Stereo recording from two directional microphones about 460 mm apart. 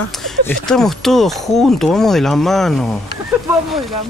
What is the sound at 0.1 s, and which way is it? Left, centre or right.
Speech, centre.